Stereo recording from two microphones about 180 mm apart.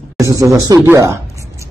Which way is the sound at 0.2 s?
20° right (ahead or behind).